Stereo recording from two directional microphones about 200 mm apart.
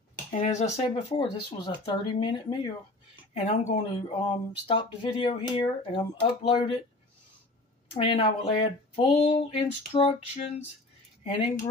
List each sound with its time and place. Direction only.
0.3 s speech: 35° left (ahead or behind)
7.9 s speech: 25° left (ahead or behind)